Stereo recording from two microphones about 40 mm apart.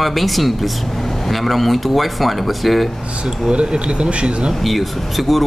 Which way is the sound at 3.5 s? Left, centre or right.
Right.